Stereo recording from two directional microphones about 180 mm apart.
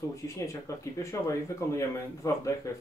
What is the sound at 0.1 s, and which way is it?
Speech, 15° left (ahead or behind).